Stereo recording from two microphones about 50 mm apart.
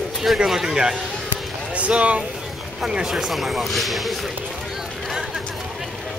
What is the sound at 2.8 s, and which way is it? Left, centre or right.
Speech, centre.